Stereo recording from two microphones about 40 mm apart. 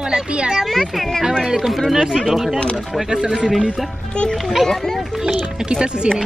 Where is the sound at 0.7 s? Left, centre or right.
Centre.